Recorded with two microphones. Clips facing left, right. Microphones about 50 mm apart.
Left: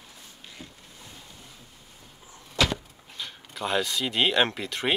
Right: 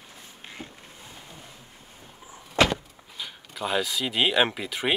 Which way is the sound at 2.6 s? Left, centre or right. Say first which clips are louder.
Right 4 dB; right.